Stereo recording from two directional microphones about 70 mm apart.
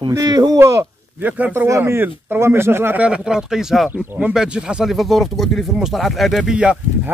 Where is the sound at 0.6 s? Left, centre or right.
Right.